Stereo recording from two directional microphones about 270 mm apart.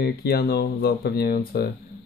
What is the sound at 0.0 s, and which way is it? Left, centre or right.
Speech, left.